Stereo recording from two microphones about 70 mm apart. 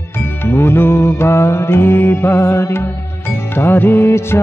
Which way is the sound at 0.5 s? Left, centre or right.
Left.